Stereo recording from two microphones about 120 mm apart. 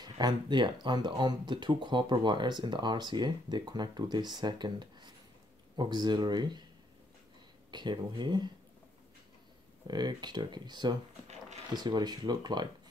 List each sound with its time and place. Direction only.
0.0 s speech: 35° right (ahead or behind)
7.7 s speech: 40° right (ahead or behind)
9.8 s speech: 35° right (ahead or behind)